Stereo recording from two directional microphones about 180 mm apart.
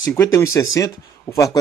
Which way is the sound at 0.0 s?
15° left (ahead or behind).